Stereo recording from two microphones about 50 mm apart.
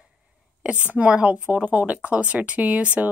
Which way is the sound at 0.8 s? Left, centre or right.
Right.